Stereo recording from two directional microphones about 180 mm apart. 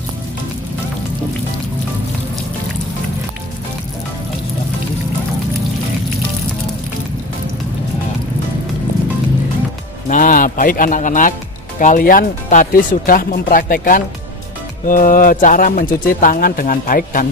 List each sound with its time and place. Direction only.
10.0 s music: 50° left (ahead or behind)
11.8 s speech: 50° left (ahead or behind)